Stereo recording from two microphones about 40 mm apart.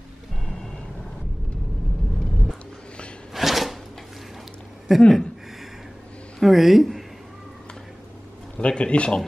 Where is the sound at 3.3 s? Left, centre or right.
Centre.